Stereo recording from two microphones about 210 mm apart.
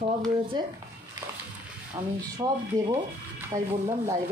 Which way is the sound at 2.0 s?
20° right (ahead or behind).